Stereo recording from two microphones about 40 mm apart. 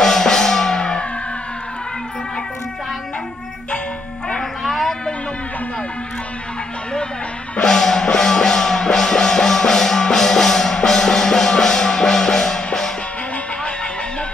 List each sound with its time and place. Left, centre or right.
0.0 s music: centre
0.7 s music: left
4.4 s music: centre
7.6 s music: centre